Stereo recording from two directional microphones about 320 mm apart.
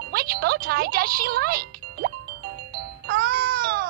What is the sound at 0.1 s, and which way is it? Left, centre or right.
Speech, right.